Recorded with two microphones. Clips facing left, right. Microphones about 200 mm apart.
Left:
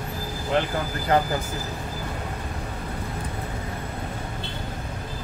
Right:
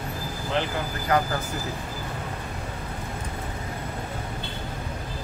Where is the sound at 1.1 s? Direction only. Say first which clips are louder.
Left 2 dB; 30° left (ahead or behind).